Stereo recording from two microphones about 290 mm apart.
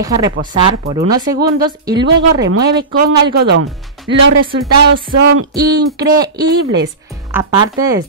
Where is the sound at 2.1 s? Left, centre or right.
Right.